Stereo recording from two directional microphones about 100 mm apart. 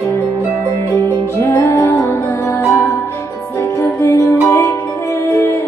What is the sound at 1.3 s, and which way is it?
Music, 30° left (ahead or behind).